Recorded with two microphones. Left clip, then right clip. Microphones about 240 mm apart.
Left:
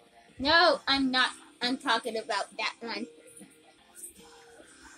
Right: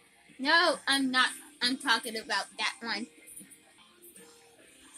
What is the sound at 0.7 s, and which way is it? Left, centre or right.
A woman's voice, right.